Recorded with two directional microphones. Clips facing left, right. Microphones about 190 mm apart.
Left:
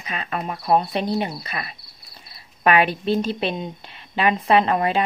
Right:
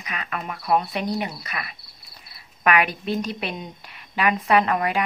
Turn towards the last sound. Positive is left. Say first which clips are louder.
# left 2 dB
turn(degrees=25)  # may be behind; listen again after turning